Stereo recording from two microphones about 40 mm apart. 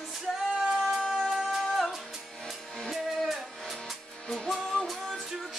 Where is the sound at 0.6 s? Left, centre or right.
Centre.